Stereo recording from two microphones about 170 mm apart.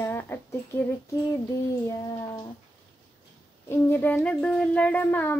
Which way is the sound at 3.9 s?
10° left (ahead or behind).